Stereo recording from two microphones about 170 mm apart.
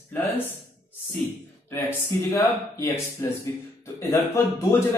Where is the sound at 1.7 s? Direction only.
15° left (ahead or behind).